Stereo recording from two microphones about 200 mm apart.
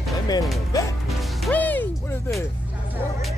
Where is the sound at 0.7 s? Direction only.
15° left (ahead or behind).